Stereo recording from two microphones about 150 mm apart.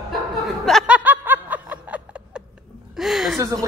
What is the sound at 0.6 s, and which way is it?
Snicker, 5° right (ahead or behind).